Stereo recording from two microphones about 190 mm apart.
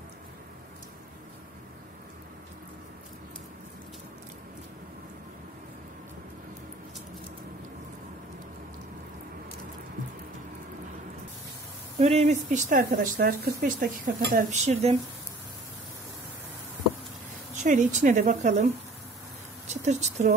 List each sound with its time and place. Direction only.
12.0 s a woman's voice: 35° right (ahead or behind)
17.6 s a woman's voice: 40° right (ahead or behind)
19.7 s speech: 35° right (ahead or behind)